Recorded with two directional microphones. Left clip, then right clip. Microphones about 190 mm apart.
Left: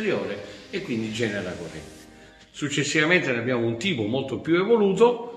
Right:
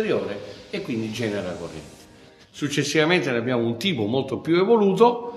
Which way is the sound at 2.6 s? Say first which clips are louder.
Right 2 dB; 55° right (ahead or behind).